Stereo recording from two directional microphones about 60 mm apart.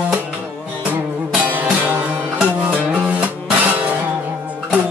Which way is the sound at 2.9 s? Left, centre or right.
Right.